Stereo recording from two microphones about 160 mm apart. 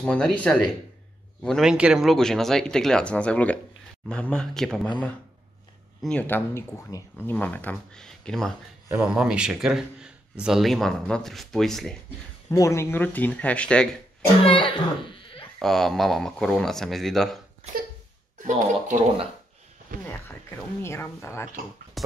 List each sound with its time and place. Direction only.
0.0 s a man's voice: 5° left (ahead or behind)
6.0 s speech: 10° left (ahead or behind)
8.8 s a man's voice: 10° right (ahead or behind)
12.4 s speech: 20° left (ahead or behind)
14.4 s speech: 35° left (ahead or behind)
15.6 s a man's voice: centre (ahead or behind)
18.4 s speech: 50° right (ahead or behind)
20.1 s speech: 15° left (ahead or behind)
22.0 s a sound: centre (ahead or behind)